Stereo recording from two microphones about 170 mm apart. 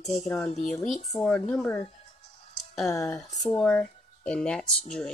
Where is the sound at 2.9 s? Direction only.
20° left (ahead or behind).